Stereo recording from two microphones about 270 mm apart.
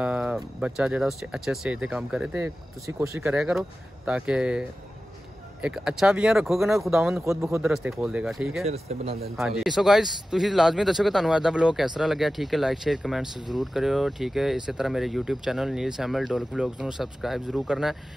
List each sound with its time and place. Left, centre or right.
0.0 s a man's voice: centre
8.6 s speech: right
9.4 s a man's voice: centre